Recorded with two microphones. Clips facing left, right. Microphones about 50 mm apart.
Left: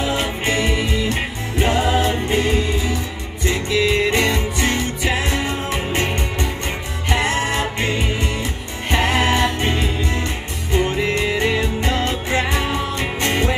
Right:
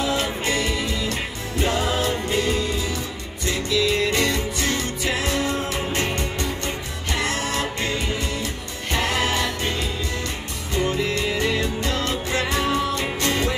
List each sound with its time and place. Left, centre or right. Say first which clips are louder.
0.0 s music: left 2 dB; left